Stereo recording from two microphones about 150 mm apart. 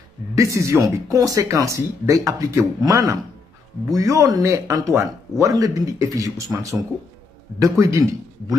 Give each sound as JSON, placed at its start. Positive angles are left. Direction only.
{"t": 0.4, "sound": "speech", "side_deg": -20}
{"t": 7.8, "sound": "a man's voice", "side_deg": -20}